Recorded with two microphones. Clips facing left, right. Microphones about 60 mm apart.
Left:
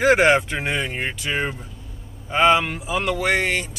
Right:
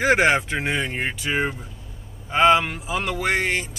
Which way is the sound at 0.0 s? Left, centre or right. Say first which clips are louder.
Left 2 dB; centre.